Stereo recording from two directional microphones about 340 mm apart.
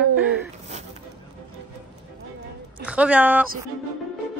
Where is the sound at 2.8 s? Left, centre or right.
Centre.